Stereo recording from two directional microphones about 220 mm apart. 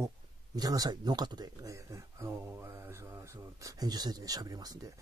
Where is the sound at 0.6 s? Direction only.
15° right (ahead or behind).